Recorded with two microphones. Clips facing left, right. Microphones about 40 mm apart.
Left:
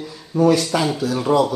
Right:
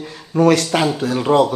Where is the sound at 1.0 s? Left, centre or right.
Right.